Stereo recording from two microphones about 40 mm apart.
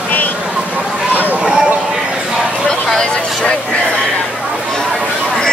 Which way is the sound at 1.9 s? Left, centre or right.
Centre.